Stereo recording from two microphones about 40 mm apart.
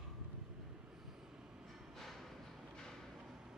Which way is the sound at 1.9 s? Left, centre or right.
Centre.